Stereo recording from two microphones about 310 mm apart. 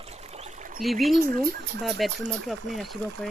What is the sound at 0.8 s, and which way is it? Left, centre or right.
Speech, centre.